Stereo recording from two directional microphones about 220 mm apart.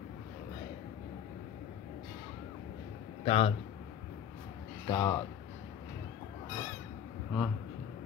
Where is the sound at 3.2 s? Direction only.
25° left (ahead or behind).